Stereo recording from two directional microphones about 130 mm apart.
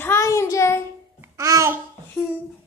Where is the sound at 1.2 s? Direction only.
25° right (ahead or behind).